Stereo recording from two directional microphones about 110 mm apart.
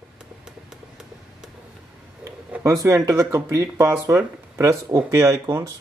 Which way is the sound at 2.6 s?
30° right (ahead or behind).